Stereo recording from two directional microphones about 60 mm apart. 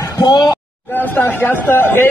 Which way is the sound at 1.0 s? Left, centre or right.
Left.